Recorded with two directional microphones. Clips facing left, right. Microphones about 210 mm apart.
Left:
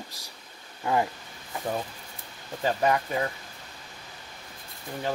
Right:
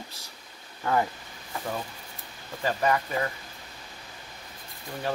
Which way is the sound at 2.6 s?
15° left (ahead or behind).